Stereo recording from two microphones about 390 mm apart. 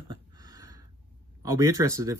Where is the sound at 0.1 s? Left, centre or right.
Centre.